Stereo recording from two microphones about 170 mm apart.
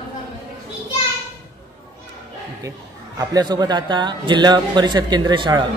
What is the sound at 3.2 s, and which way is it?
A man's voice, 25° right (ahead or behind).